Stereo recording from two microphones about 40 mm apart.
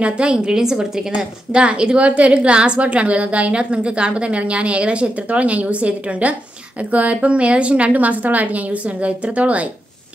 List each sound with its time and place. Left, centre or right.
0.0 s a woman's voice: right
7.9 s a woman's voice: right